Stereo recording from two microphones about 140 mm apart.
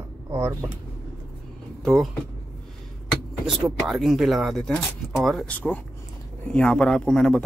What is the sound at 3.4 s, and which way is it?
Speech, 5° right (ahead or behind).